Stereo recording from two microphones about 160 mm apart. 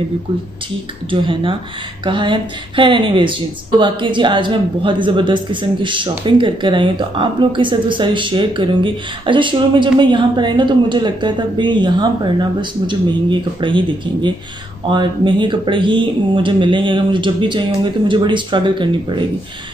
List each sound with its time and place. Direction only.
1.1 s speech: 35° right (ahead or behind)